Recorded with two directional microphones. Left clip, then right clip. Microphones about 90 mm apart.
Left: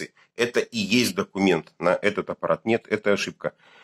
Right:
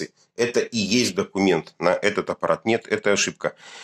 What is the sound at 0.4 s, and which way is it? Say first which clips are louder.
Speech: right 2 dB; 10° right (ahead or behind).